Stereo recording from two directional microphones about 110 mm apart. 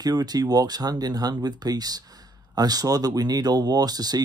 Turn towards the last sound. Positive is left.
turn(degrees=-35)  # may be behind; listen again after turning